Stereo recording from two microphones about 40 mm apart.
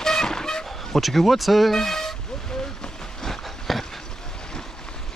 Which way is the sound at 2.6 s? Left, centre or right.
Centre.